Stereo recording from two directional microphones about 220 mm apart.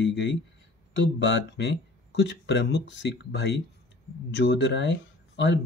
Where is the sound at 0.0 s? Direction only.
55° left (ahead or behind).